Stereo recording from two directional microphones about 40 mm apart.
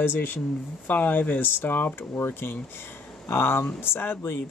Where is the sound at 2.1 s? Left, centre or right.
Left.